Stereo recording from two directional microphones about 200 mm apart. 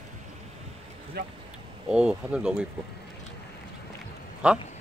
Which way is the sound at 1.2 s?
55° right (ahead or behind).